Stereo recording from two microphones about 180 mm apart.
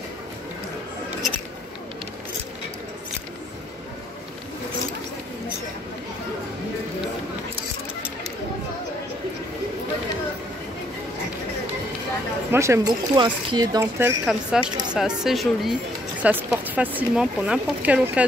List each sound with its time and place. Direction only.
12.4 s a woman's voice: 15° right (ahead or behind)